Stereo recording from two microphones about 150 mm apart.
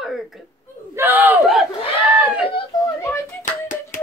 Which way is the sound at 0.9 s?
15° right (ahead or behind).